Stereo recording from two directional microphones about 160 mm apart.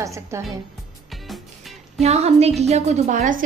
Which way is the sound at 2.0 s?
40° right (ahead or behind).